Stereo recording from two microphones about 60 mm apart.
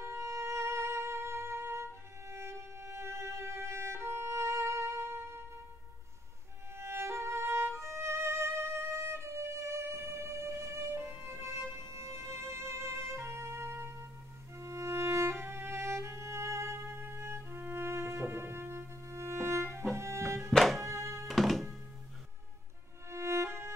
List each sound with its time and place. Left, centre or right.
0.0 s music: right
6.7 s music: right
20.5 s music: centre
20.8 s music: right
21.3 s music: centre
23.0 s music: right